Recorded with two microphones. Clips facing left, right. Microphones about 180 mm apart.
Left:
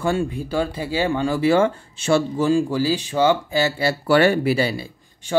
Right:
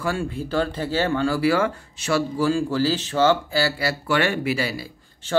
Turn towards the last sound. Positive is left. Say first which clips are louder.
# left 1 dB
turn(degrees=15)  # may be behind; listen again after turning